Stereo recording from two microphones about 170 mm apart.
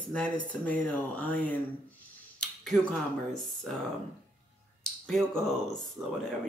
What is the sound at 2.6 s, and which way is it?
Speech, 5° left (ahead or behind).